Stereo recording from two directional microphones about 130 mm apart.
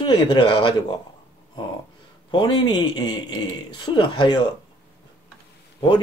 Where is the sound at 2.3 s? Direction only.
35° left (ahead or behind).